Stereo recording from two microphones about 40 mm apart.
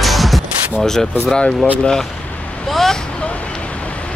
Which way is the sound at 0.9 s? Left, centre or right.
Centre.